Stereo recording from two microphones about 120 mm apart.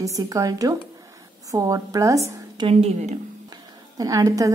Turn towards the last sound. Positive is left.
turn(degrees=-30)  # may be behind; listen again after turning